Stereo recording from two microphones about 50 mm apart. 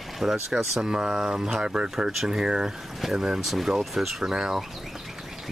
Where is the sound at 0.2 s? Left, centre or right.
Centre.